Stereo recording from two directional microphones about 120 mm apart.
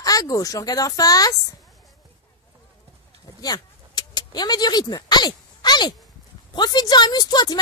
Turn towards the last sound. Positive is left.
turn(degrees=35)  # may be behind; listen again after turning